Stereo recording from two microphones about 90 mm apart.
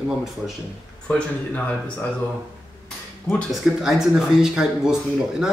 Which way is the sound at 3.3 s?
5° right (ahead or behind).